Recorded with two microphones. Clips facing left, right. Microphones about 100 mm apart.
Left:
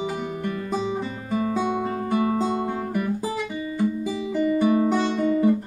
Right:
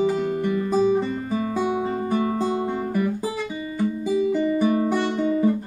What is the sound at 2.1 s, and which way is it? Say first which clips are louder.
Guitar: left 2 dB; 10° left (ahead or behind).